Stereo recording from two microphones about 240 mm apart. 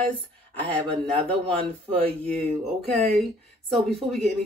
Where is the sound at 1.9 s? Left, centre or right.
Right.